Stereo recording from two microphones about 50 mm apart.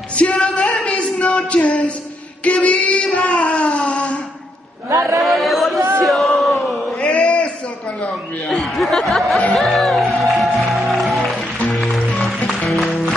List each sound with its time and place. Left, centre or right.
0.1 s music: left
2.4 s a sound: left
5.2 s chatter: centre
6.0 s crowd: centre
7.0 s chant: left
8.5 s speech: centre
9.5 s music: centre